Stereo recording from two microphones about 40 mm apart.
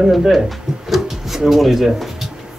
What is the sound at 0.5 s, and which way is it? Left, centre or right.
Drawer open or close, centre.